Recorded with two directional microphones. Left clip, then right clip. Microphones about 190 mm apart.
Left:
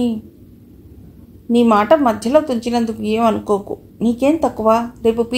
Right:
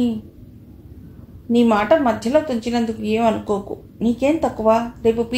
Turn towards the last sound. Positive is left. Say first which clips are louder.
# left 2 dB
turn(degrees=35)  # may be behind; listen again after turning